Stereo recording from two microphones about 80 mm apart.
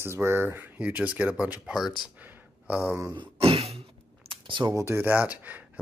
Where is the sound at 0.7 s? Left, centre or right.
Centre.